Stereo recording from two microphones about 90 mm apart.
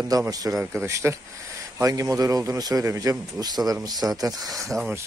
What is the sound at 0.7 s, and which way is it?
Speech, 30° right (ahead or behind).